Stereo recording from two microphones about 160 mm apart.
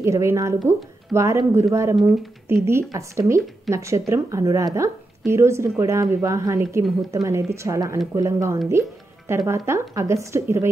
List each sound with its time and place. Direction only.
0.0 s a woman's voice: 15° right (ahead or behind)